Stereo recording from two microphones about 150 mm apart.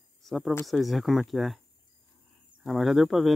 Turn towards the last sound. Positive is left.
turn(degrees=0)  # may be behind; listen again after turning